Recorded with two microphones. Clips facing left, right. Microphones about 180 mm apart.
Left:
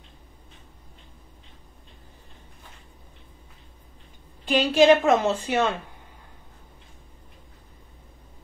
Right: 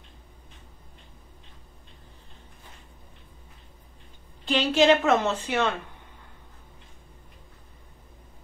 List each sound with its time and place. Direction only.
4.5 s a woman's voice: 15° left (ahead or behind)